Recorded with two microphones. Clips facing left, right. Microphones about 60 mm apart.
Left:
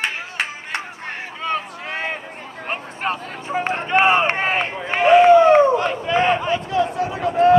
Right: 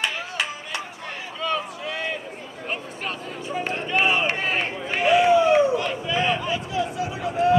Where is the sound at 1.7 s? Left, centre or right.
Left.